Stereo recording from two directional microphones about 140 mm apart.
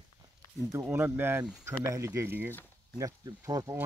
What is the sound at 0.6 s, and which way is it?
Speech, 20° right (ahead or behind).